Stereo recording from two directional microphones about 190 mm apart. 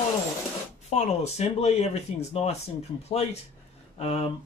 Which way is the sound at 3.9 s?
30° left (ahead or behind).